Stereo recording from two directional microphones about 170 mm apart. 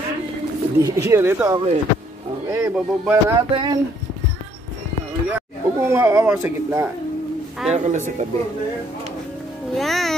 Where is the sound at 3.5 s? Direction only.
30° right (ahead or behind).